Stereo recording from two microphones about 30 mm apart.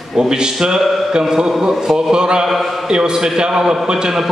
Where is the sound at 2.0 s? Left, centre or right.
Right.